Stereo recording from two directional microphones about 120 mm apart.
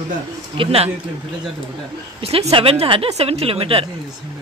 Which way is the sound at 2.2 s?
55° right (ahead or behind).